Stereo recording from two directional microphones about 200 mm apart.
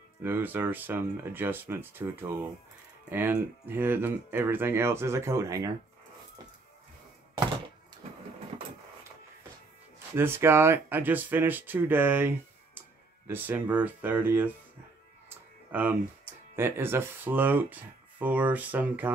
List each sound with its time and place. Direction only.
0.2 s speech: 10° right (ahead or behind)
10.1 s speech: 10° right (ahead or behind)
15.2 s music: 10° right (ahead or behind)
16.5 s speech: 10° right (ahead or behind)